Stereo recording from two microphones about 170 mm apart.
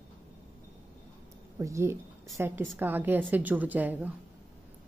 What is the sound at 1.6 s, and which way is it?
A woman's voice, 15° right (ahead or behind).